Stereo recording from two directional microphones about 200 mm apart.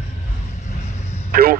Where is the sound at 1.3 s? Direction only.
50° right (ahead or behind).